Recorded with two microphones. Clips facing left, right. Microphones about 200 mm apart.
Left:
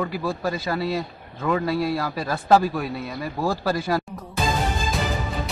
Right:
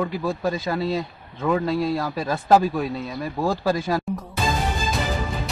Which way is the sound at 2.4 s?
15° right (ahead or behind).